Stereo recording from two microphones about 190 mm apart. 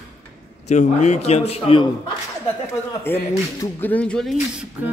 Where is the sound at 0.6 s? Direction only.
35° left (ahead or behind).